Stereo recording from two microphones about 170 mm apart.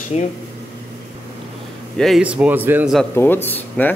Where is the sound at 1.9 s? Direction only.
Centre (ahead or behind).